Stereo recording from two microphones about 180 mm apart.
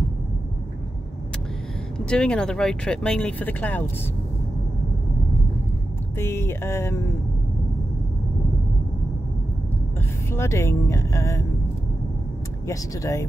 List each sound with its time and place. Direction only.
2.0 s speech: 5° left (ahead or behind)
6.1 s speech: 15° left (ahead or behind)
10.3 s speech: 15° left (ahead or behind)
12.6 s speech: 15° left (ahead or behind)